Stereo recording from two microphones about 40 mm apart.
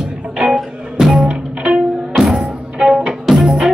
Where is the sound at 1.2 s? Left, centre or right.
Right.